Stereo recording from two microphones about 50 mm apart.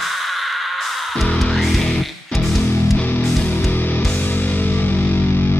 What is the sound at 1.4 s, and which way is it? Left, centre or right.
Music, centre.